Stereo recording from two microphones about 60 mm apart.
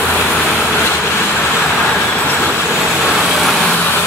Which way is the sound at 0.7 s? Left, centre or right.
Left.